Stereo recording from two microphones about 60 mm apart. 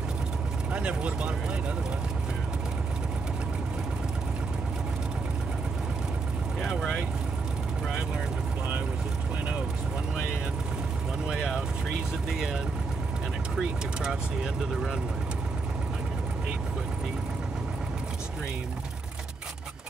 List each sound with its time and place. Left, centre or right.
0.7 s speech: centre
11.2 s vehicle: centre
13.6 s speech: centre